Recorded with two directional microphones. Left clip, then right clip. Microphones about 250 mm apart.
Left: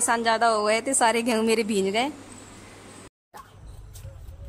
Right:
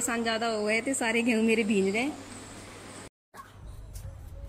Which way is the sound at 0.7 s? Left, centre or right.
Left.